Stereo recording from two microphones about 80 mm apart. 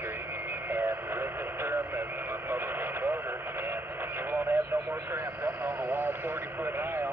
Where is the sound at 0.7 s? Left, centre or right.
Right.